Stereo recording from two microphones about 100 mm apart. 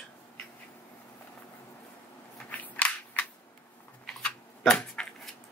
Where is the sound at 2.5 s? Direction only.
15° left (ahead or behind).